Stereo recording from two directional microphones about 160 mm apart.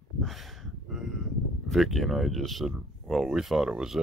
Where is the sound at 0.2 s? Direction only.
Centre (ahead or behind).